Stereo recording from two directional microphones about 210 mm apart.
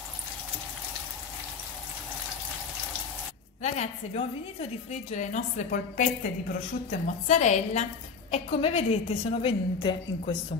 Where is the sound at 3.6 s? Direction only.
30° left (ahead or behind).